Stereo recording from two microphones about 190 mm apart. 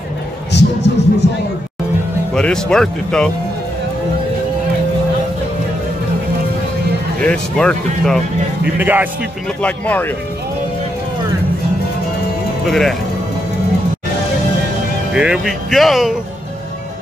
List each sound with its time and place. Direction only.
0.5 s speech: 65° left (ahead or behind)
2.3 s speech: 5° left (ahead or behind)
7.2 s speech: 5° left (ahead or behind)
8.7 s speech: 10° right (ahead or behind)
9.6 s speech: 10° left (ahead or behind)
12.6 s speech: centre (ahead or behind)
15.1 s speech: 5° right (ahead or behind)